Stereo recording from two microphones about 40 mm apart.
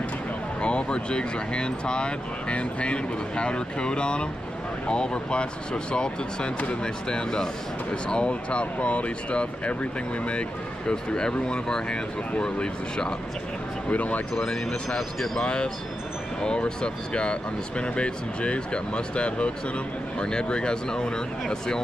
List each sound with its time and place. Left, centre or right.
0.6 s speech: left
13.8 s speech: left
14.4 s speech: centre